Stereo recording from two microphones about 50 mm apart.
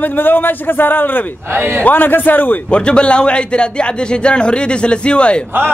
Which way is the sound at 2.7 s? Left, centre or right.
Left.